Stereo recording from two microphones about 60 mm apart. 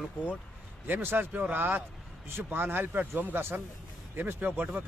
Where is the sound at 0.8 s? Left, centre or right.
Right.